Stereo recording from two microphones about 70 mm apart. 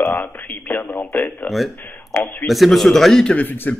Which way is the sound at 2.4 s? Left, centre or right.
Centre.